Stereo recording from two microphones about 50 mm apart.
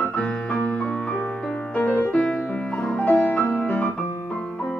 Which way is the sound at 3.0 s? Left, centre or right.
Left.